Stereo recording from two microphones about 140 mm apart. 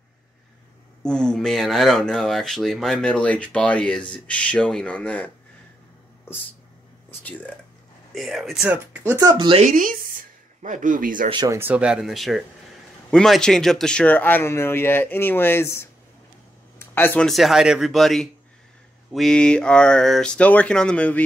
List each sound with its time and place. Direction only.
1.0 s speech: 5° left (ahead or behind)
7.2 s speech: 10° left (ahead or behind)
8.1 s speech: centre (ahead or behind)
8.6 s speech: 15° right (ahead or behind)
9.7 s speech: 75° right (ahead or behind)
11.2 s speech: 30° right (ahead or behind)
11.5 s speech: 10° right (ahead or behind); by 15.9 s 20° left (ahead or behind)
16.7 s a sound: 15° left (ahead or behind)
17.3 s speech: centre (ahead or behind)